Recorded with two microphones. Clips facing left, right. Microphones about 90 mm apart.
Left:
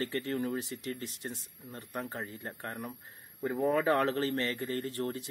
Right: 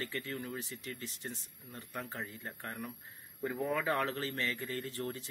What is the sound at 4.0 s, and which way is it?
A man's voice, 55° left (ahead or behind).